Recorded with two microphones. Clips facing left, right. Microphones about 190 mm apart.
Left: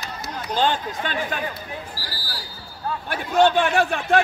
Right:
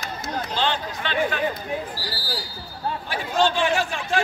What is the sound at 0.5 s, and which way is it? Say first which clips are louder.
Speech: left 5 dB; 45° left (ahead or behind).